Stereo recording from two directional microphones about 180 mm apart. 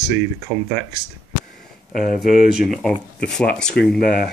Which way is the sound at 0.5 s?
5° left (ahead or behind).